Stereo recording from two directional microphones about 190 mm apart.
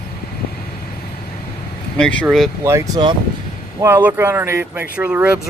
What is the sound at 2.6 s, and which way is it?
Speech, 15° right (ahead or behind).